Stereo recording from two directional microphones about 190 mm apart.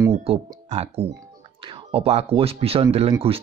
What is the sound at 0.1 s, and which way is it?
Speech, 35° right (ahead or behind).